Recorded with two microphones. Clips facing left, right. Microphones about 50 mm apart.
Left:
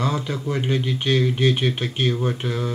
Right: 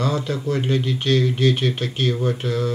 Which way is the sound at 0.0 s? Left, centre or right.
Centre.